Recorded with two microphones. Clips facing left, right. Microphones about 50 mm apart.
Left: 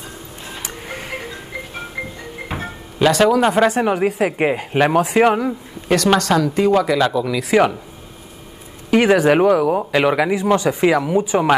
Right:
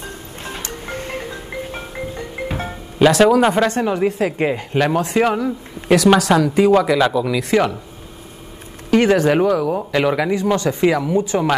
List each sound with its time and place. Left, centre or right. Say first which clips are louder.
0.6 s music: right 1 dB; centre
3.0 s speech: right 2 dB; centre
4.0 s speech: left 1 dB; centre
5.9 s speech: right 3 dB; centre
8.9 s speech: left 1 dB; centre